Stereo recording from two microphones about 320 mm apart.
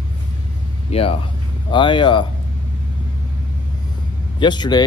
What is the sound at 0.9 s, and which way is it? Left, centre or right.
Speech, centre.